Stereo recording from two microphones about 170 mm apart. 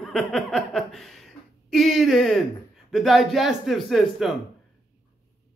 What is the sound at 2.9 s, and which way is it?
A man's voice, centre (ahead or behind).